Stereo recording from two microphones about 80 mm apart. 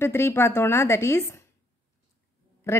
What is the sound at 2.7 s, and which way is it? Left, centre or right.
Speech, left.